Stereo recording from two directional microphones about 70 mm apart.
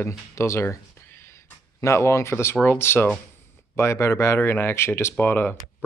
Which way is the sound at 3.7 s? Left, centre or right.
Left.